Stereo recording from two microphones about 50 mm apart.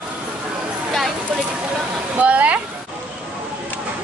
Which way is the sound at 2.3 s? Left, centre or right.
Right.